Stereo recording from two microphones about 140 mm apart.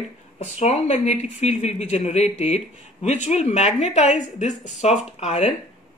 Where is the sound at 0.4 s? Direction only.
50° left (ahead or behind).